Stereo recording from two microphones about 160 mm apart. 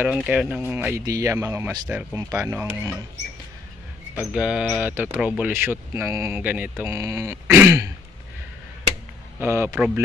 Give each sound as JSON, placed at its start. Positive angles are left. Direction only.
{"t": 0.0, "sound": "speech", "side_deg": -10}
{"t": 4.1, "sound": "speech", "side_deg": -10}
{"t": 9.4, "sound": "speech", "side_deg": -15}